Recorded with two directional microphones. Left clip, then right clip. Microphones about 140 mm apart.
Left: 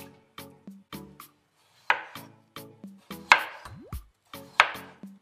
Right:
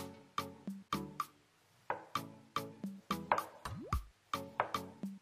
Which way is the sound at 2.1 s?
Centre (ahead or behind).